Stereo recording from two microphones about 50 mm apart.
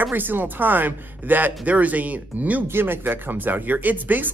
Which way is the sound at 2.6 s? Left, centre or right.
Right.